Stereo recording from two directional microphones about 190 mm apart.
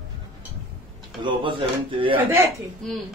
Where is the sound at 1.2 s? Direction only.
25° right (ahead or behind).